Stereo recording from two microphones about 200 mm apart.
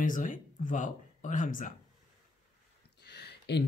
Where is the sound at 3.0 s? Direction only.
55° left (ahead or behind).